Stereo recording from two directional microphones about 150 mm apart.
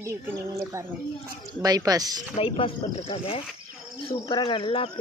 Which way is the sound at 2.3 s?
35° left (ahead or behind).